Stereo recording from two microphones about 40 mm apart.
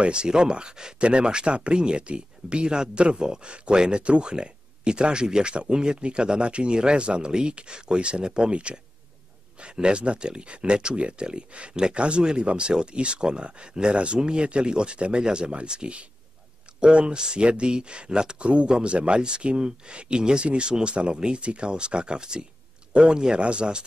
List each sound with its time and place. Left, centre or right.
0.0 s speech: right